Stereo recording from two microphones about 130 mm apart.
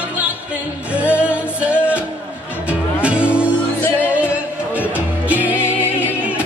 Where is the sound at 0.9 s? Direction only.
10° right (ahead or behind).